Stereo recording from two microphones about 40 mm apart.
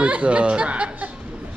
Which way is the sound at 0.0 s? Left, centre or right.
Right.